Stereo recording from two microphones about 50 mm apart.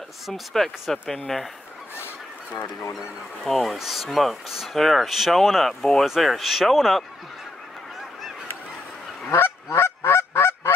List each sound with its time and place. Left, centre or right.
0.3 s speech: centre
3.4 s speech: centre
6.0 s speech: centre
9.4 s honk: left